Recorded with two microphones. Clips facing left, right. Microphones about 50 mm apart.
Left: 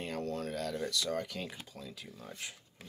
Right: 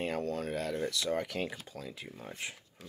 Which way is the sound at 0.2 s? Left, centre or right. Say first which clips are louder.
Right 2 dB; centre.